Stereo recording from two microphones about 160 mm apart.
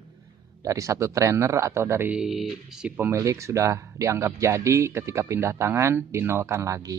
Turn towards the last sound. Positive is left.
turn(degrees=-20)  # may be behind; listen again after turning